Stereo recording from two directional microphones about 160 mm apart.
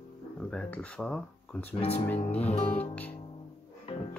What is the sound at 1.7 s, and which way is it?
Speech, 35° left (ahead or behind).